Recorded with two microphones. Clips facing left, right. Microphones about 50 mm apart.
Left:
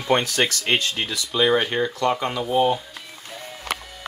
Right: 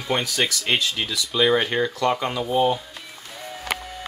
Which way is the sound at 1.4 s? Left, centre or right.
Centre.